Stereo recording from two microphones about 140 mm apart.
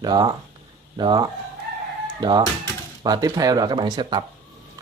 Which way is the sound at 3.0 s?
25° right (ahead or behind).